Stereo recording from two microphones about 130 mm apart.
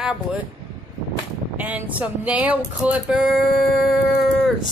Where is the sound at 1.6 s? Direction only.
10° right (ahead or behind).